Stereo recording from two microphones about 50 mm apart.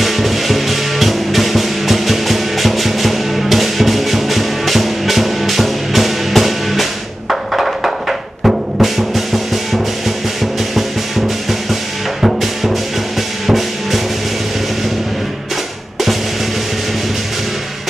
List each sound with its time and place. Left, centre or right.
0.0 s music: centre